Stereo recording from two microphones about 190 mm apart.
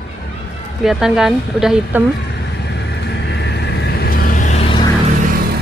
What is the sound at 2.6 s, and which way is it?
Vehicle, 65° left (ahead or behind).